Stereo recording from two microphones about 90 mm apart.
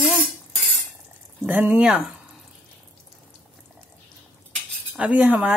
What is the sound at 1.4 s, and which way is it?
Speech, 20° right (ahead or behind).